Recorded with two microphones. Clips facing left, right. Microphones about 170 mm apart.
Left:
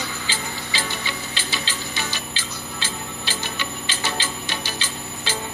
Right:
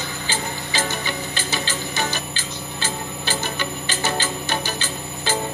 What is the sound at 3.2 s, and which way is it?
Music, 45° right (ahead or behind).